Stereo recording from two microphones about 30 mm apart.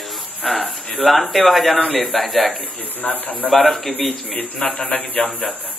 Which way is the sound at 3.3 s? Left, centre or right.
Centre.